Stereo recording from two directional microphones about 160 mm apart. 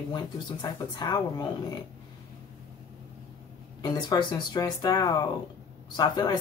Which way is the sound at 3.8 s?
25° left (ahead or behind).